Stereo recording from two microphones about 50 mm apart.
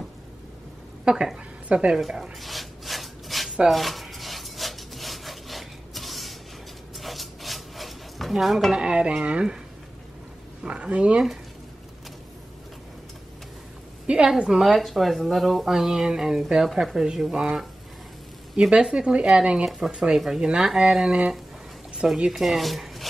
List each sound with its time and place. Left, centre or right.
1.0 s a woman's voice: centre
1.7 s speech: right
2.0 s speech: centre
2.4 s wood: centre
3.6 s rub: centre
7.0 s stir: centre
8.7 s speech: centre
10.6 s speech: right
14.0 s a woman's voice: right
14.5 s speech: centre
18.9 s speech: centre
19.6 s speech: centre
22.0 s speech: centre